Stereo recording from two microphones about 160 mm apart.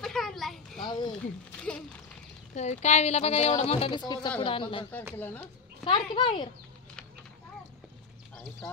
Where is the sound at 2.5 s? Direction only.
45° left (ahead or behind).